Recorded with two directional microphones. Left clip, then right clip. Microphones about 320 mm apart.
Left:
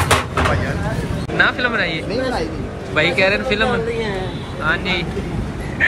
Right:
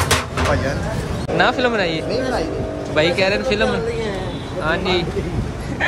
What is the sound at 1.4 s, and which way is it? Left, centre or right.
Speech, centre.